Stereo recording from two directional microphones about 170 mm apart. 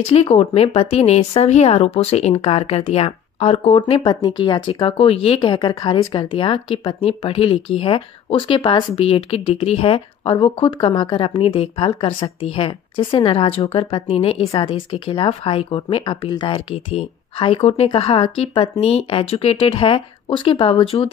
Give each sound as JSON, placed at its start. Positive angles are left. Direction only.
{"t": 0.0, "sound": "speech", "side_deg": 35}
{"t": 4.1, "sound": "speech", "side_deg": 25}